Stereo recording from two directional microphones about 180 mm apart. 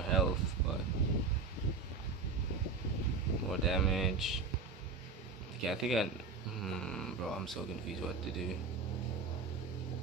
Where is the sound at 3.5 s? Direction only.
Centre (ahead or behind).